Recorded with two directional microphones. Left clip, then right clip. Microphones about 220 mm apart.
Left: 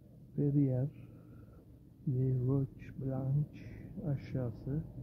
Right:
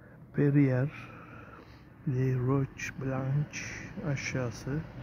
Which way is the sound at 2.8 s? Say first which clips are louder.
Right 7 dB; 15° right (ahead or behind).